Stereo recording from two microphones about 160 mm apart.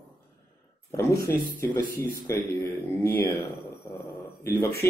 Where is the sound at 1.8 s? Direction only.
60° right (ahead or behind).